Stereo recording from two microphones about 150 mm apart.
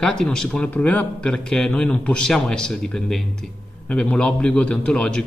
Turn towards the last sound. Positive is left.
turn(degrees=5)  # may be behind; listen again after turning